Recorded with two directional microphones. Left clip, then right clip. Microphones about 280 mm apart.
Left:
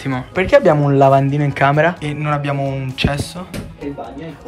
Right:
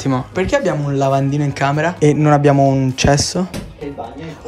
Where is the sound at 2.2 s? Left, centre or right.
Right.